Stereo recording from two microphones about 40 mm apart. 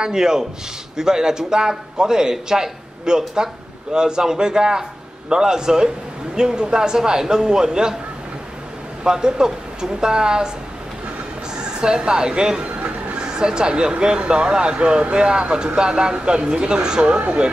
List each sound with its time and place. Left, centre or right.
0.0 s a man's voice: centre
9.0 s speech: centre
11.5 s speech: centre